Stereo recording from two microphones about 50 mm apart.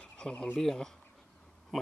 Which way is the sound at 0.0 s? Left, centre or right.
Centre.